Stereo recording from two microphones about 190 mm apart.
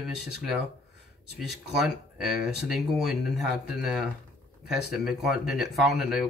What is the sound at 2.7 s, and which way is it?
Speech, centre (ahead or behind).